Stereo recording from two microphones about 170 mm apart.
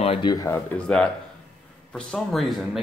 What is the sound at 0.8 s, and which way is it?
Speech, 5° left (ahead or behind).